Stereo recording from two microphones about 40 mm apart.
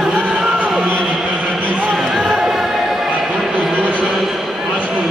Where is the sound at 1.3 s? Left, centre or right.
Right.